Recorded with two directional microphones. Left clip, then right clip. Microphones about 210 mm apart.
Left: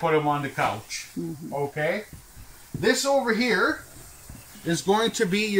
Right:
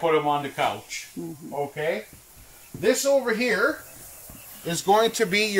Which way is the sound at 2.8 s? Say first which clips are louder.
Right 1 dB; 5° right (ahead or behind).